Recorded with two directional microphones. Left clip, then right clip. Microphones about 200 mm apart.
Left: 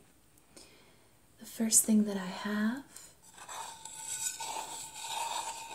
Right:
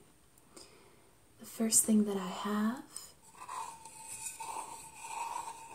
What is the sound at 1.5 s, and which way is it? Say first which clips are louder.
Speech: even; centre (ahead or behind).